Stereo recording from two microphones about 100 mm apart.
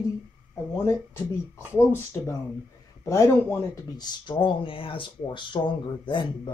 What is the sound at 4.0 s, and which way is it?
Speech, 55° left (ahead or behind).